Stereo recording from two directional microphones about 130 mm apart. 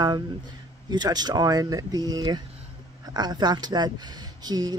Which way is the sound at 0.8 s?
30° right (ahead or behind).